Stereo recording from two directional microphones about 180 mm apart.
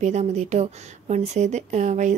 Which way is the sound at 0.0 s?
40° right (ahead or behind).